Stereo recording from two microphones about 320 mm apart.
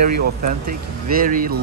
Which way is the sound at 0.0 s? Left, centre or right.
Right.